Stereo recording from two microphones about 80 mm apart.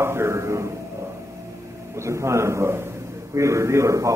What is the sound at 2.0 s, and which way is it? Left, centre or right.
A man's voice, right.